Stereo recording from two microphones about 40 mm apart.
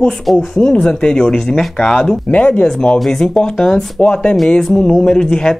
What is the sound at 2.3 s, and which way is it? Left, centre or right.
Speech, left.